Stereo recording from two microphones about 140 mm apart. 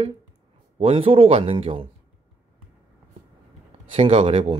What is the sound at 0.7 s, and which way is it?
Speech, 45° right (ahead or behind).